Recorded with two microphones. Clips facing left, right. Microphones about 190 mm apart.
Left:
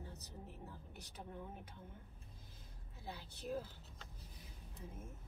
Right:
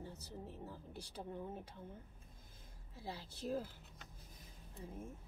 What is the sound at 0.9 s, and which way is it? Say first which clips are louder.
Speech: right 5 dB; 30° right (ahead or behind).